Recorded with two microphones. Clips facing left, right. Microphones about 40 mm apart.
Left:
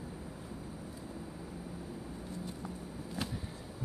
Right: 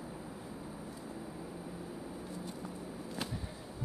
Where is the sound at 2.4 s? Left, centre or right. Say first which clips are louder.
Even; centre.